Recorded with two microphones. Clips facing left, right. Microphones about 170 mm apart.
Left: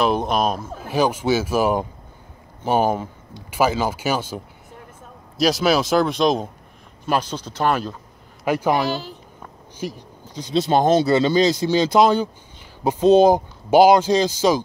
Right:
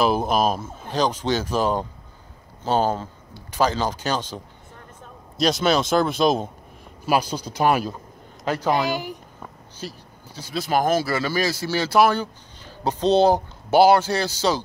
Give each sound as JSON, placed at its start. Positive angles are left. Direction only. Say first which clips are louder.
{"t": 0.0, "sound": "speech", "louder": "even", "side_deg": -5}
{"t": 0.7, "sound": "speech", "louder": "left 3 dB", "side_deg": 10}
{"t": 5.4, "sound": "speech", "louder": "left 2 dB", "side_deg": 0}
{"t": 8.5, "sound": "speech", "louder": "left 2 dB", "side_deg": 15}
{"t": 8.8, "sound": "speech", "louder": "left 1 dB", "side_deg": -15}
{"t": 9.8, "sound": "speech", "louder": "left 6 dB", "side_deg": 15}